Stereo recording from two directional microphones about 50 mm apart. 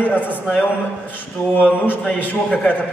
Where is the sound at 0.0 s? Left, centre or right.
Left.